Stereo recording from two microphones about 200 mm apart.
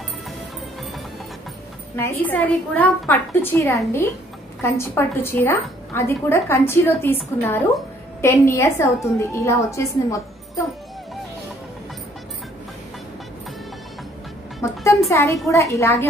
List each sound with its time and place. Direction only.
2.0 s a woman's voice: 10° left (ahead or behind)
14.6 s music: 15° left (ahead or behind)
15.0 s a child's voice: 15° left (ahead or behind)